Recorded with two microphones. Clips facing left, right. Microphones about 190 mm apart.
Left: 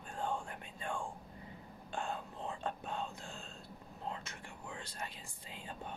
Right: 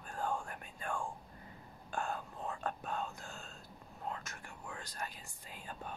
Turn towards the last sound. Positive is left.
turn(degrees=25)  # may be behind; listen again after turning